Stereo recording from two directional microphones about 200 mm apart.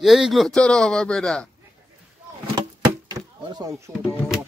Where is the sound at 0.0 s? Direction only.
Centre (ahead or behind).